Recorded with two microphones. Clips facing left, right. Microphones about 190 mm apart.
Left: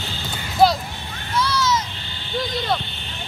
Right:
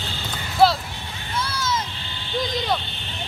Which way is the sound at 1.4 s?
50° right (ahead or behind).